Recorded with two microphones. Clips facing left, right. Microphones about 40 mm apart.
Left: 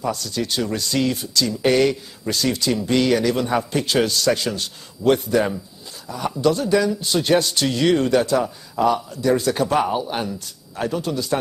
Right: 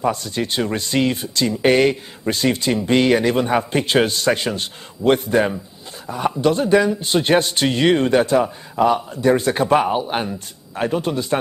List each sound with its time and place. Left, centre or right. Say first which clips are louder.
0.0 s speech: right 3 dB; right
6.0 s a sound: right 5 dB; right
6.4 s speech: right 2 dB; right